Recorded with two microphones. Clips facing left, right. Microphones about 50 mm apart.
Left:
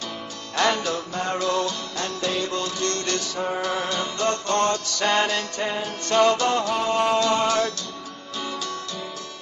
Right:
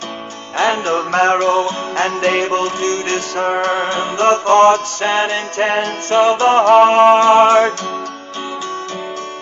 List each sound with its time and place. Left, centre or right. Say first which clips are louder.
0.6 s music: right 6 dB; right
0.9 s mantra: right 13 dB; right
1.5 s music: right 9 dB; right
3.3 s music: right 11 dB; right
5.6 s mantra: right 15 dB; right
6.0 s music: right 6 dB; right